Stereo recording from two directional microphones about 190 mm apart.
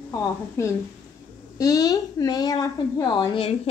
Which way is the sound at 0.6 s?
15° left (ahead or behind).